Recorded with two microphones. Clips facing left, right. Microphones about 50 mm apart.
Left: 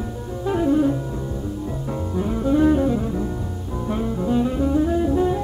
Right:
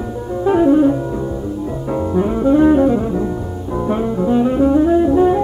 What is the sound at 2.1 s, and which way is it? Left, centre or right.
Music, right.